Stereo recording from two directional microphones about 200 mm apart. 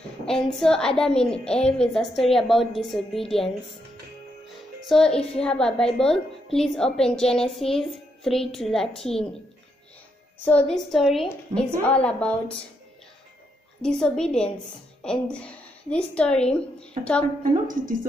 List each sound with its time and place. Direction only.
0.3 s a woman's voice: 5° left (ahead or behind)
4.8 s a woman's voice: 5° left (ahead or behind)
10.4 s a woman's voice: 5° left (ahead or behind)
13.7 s a woman's voice: 5° left (ahead or behind)
17.4 s a woman's voice: 40° right (ahead or behind)